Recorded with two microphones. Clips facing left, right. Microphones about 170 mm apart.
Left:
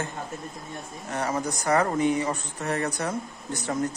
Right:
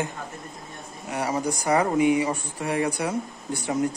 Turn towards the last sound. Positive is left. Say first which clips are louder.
# right 2 dB
turn(degrees=-10)  # may be behind; listen again after turning